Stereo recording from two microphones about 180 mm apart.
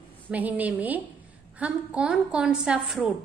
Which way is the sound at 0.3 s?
10° right (ahead or behind).